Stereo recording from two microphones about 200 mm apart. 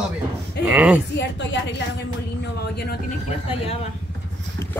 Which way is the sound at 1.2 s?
60° left (ahead or behind).